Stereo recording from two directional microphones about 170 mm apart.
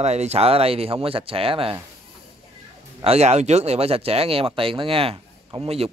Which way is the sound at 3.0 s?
40° right (ahead or behind).